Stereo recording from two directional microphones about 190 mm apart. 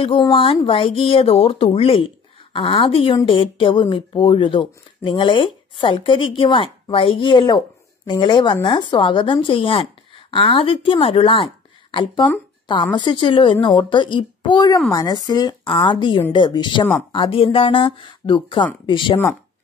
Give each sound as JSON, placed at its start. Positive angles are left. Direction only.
{"t": 0.0, "sound": "speech", "side_deg": 25}